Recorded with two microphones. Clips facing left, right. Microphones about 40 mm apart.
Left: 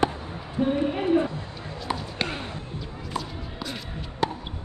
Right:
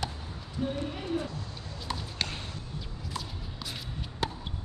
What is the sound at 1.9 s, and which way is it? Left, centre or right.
Basketball bounce, left.